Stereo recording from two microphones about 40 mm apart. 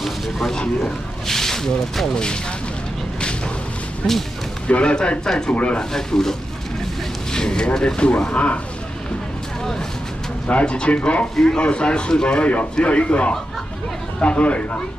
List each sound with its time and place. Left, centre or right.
0.0 s speech: centre
4.0 s a man's voice: left
5.5 s speech: left
5.8 s speech: centre
7.3 s speech: centre
8.3 s speech: left
10.5 s a man's voice: left